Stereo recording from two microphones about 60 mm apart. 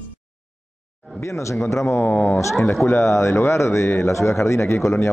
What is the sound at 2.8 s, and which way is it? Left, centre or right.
A man's voice, left.